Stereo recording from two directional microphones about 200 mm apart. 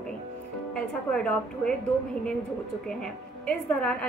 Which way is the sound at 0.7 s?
5° left (ahead or behind).